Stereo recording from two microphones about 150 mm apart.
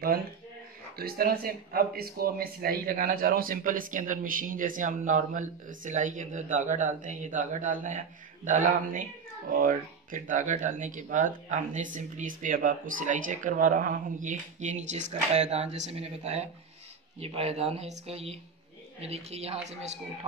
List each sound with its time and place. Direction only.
0.9 s speech: 90° right; by 19.6 s 45° right (ahead or behind)